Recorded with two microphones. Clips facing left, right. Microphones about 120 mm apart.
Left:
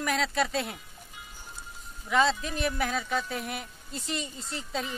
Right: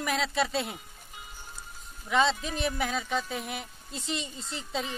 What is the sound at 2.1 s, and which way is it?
Speech, centre (ahead or behind).